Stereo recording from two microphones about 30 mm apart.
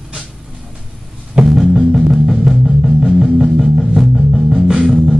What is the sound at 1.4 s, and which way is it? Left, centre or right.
Music, centre.